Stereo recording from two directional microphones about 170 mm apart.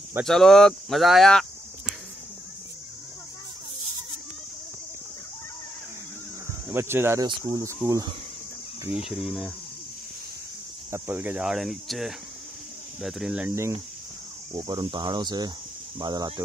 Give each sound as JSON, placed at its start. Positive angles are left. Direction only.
{"t": 0.2, "sound": "speech", "side_deg": 0}
{"t": 6.7, "sound": "speech", "side_deg": -15}
{"t": 8.9, "sound": "speech", "side_deg": -5}
{"t": 10.9, "sound": "speech", "side_deg": -10}
{"t": 14.5, "sound": "speech", "side_deg": -25}